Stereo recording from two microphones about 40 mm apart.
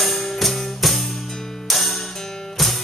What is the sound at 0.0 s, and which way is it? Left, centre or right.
Music, centre.